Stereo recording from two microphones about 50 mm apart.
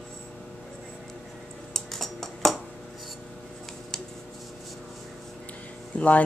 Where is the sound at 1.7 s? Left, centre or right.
Centre.